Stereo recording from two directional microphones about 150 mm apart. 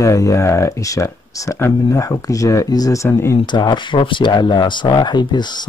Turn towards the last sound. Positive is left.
turn(degrees=30)  # may be behind; listen again after turning